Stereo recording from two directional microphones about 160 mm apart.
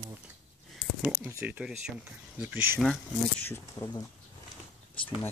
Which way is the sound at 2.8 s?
5° left (ahead or behind).